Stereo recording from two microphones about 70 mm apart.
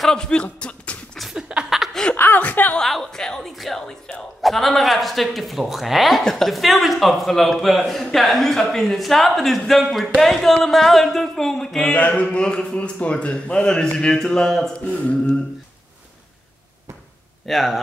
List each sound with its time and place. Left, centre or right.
0.0 s speech: centre
1.3 s laughter: centre
1.8 s chuckle: centre
2.1 s chuckle: left
2.8 s a man's voice: centre
11.9 s speech: left
17.5 s a man's voice: centre